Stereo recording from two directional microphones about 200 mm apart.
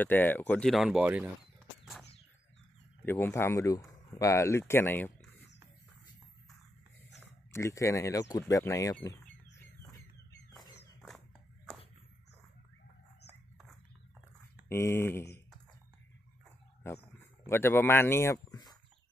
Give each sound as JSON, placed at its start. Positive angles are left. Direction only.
{"t": 0.0, "sound": "speech", "side_deg": 10}
{"t": 3.1, "sound": "speech", "side_deg": 10}
{"t": 7.5, "sound": "speech", "side_deg": 15}
{"t": 14.7, "sound": "speech", "side_deg": 10}
{"t": 17.5, "sound": "speech", "side_deg": 10}